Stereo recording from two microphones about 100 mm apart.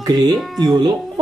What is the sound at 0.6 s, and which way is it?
Speech, 40° right (ahead or behind).